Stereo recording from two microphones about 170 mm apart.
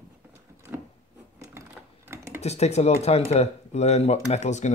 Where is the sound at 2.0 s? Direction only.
15° right (ahead or behind).